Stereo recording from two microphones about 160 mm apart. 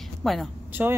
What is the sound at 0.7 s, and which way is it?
Vehicle, 10° right (ahead or behind).